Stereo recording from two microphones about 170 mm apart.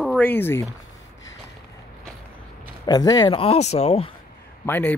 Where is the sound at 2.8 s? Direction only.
25° left (ahead or behind).